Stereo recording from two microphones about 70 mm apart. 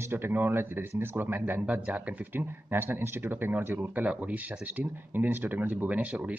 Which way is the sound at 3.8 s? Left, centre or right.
Centre.